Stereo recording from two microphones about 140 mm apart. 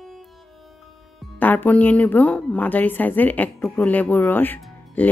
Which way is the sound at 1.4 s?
15° left (ahead or behind).